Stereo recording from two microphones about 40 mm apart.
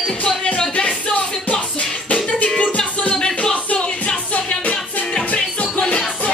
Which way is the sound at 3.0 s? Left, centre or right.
Centre.